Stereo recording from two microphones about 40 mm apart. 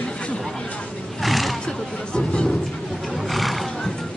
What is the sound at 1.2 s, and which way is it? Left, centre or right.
Roaring cats, centre.